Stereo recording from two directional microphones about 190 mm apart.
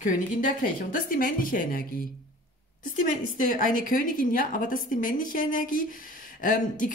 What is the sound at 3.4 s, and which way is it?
A woman's voice, 45° left (ahead or behind).